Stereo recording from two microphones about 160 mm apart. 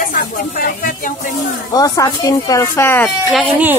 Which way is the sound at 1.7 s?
20° left (ahead or behind).